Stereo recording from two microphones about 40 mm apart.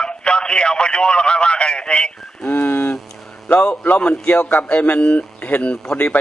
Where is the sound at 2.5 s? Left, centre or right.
Left.